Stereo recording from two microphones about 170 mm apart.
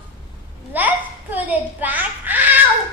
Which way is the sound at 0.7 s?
10° right (ahead or behind).